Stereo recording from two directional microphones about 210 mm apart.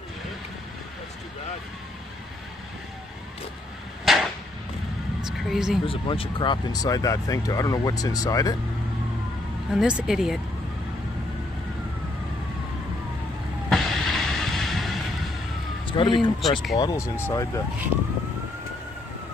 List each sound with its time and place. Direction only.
4.0 s a sound: centre (ahead or behind)
5.9 s speech: 25° left (ahead or behind)
9.7 s speech: 5° right (ahead or behind)
13.7 s music: centre (ahead or behind)
15.9 s speech: 25° left (ahead or behind)